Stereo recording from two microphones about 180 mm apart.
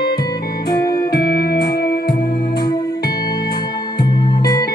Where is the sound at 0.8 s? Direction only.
65° left (ahead or behind).